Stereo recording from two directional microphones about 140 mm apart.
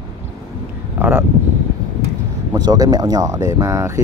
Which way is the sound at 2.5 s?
25° right (ahead or behind).